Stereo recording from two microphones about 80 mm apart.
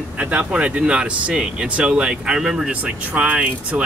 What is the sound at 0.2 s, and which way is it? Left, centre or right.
Speech, centre.